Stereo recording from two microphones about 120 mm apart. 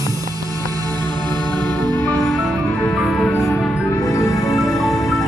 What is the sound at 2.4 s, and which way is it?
Music, centre (ahead or behind).